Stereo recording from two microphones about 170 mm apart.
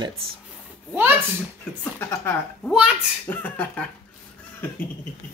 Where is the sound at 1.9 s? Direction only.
15° left (ahead or behind).